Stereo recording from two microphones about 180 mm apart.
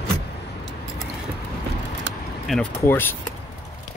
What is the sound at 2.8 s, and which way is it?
Speech, 10° left (ahead or behind).